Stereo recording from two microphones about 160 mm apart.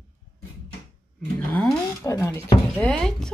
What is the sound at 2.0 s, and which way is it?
Speech, 20° left (ahead or behind).